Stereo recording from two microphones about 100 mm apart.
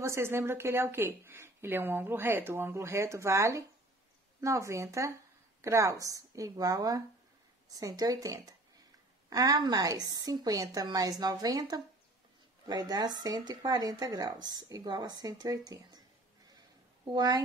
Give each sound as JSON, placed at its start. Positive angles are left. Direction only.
{"t": 0.0, "sound": "speech", "side_deg": -25}
{"t": 17.1, "sound": "speech", "side_deg": -40}